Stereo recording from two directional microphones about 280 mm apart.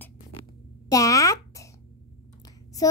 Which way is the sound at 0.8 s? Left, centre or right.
Centre.